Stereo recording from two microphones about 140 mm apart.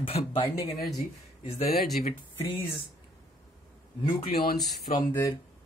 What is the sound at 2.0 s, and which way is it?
Speech, 50° left (ahead or behind).